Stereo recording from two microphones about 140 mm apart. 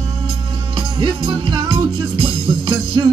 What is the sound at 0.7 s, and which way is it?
Music, 35° right (ahead or behind).